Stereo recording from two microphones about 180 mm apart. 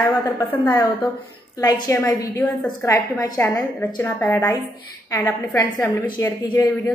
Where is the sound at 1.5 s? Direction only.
20° left (ahead or behind).